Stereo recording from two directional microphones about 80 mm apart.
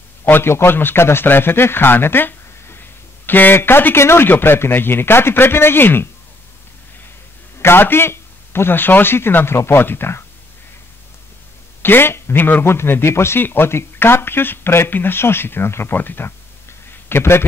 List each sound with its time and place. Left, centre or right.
0.2 s a man's voice: left
7.5 s a man's voice: left
11.8 s a man's voice: left